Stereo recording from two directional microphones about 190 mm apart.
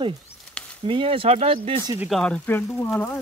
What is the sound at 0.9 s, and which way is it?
Speech, 30° right (ahead or behind).